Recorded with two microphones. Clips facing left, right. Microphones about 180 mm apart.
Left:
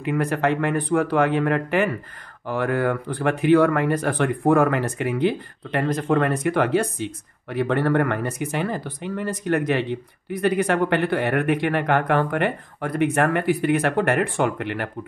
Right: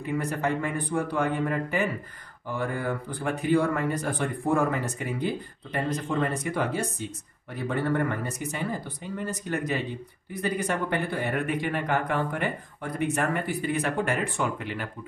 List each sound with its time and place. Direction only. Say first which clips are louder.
0.0 s speech: left 6 dB; 65° left (ahead or behind)